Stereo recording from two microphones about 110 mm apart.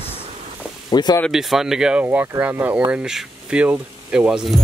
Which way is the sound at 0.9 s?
40° left (ahead or behind).